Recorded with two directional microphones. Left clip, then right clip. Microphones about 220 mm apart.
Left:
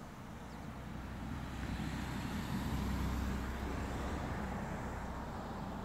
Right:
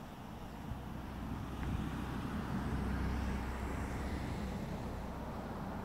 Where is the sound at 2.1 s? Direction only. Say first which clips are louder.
Even; 50° left (ahead or behind).